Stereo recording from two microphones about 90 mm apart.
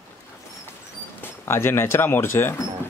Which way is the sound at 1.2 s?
25° left (ahead or behind).